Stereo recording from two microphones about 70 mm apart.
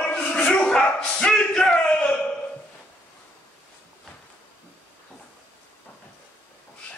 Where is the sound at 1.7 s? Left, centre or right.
Centre.